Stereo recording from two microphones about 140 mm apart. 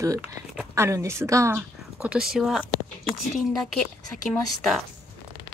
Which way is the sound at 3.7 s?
Centre (ahead or behind).